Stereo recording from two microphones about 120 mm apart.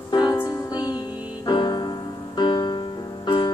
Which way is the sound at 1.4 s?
40° left (ahead or behind).